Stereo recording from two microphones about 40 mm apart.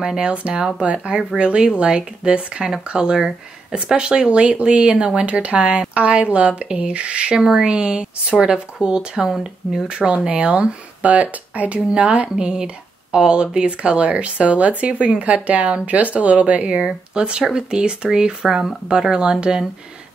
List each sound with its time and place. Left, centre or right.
0.0 s speech: centre
9.8 s speech: right
11.9 s speech: right